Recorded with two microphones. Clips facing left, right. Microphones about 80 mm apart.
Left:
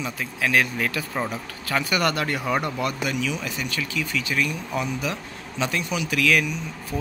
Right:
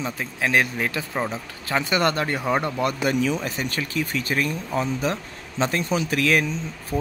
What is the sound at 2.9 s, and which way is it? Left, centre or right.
Speech, right.